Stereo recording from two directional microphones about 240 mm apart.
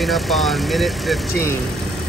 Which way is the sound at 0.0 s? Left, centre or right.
Centre.